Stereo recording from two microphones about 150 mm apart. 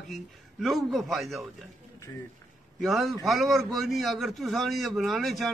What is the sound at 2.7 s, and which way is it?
A man's voice, centre (ahead or behind).